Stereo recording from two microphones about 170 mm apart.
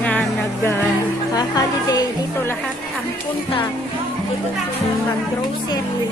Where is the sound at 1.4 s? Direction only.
20° left (ahead or behind).